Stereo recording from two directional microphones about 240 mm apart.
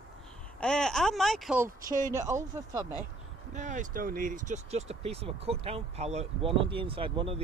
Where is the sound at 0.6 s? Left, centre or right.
Centre.